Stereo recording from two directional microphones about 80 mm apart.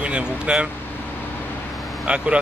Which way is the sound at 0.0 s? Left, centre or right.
Centre.